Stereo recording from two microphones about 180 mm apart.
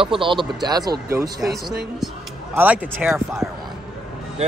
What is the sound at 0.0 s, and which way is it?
Speech, 30° right (ahead or behind).